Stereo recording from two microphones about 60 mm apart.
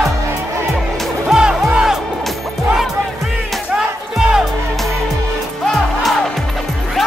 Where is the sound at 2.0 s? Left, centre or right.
Centre.